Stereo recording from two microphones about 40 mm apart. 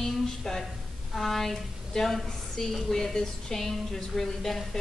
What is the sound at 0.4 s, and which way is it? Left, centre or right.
Speech, centre.